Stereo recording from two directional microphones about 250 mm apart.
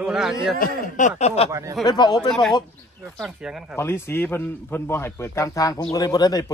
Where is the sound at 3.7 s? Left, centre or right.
Centre.